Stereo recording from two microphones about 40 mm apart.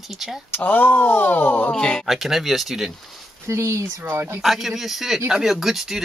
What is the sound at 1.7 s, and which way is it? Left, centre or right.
Speech, left.